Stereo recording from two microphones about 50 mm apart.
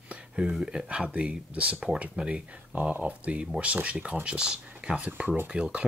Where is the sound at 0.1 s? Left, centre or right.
Right.